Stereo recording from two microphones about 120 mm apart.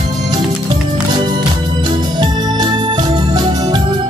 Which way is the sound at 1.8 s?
35° right (ahead or behind).